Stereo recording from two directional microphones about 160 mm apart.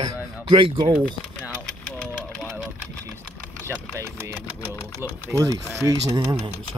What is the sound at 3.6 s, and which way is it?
Speech, 20° right (ahead or behind).